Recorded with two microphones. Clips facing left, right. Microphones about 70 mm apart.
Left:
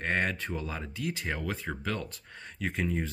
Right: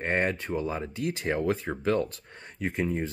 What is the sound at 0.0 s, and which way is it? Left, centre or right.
Speech, right.